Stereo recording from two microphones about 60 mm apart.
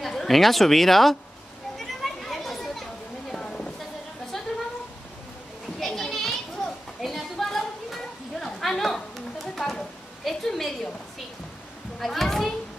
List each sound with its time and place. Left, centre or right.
0.0 s speech: centre
1.8 s children playing: centre
3.3 s a sound: centre
5.8 s children playing: centre
9.6 s a sound: centre
12.0 s children playing: centre